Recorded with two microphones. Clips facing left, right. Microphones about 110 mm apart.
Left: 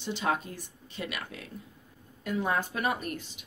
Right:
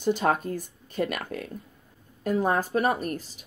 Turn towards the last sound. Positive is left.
turn(degrees=-40)  # may be behind; listen again after turning